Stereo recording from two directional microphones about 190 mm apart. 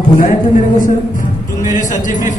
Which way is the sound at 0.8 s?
40° left (ahead or behind).